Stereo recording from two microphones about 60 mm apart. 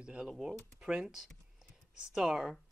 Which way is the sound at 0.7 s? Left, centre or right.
Centre.